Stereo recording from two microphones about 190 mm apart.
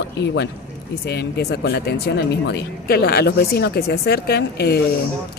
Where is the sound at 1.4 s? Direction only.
55° left (ahead or behind).